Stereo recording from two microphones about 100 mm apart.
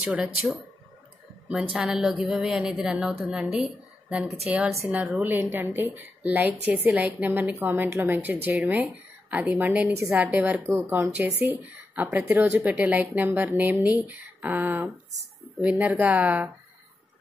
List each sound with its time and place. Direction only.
0.1 s a woman's voice: 10° right (ahead or behind)